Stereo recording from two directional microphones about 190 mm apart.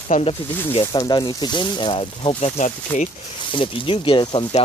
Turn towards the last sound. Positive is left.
turn(degrees=25)  # may be behind; listen again after turning